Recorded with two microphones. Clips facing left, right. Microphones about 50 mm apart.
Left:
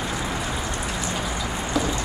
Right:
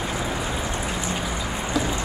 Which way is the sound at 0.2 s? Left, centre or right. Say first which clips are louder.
Right 1 dB; centre.